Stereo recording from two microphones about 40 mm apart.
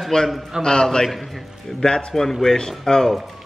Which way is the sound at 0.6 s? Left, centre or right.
Centre.